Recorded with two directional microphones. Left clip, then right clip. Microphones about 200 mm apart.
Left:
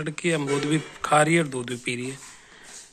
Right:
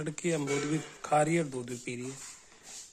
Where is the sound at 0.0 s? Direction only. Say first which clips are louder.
Left 7 dB; 10° right (ahead or behind).